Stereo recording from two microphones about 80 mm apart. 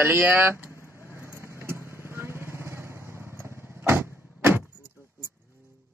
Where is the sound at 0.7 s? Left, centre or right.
Left.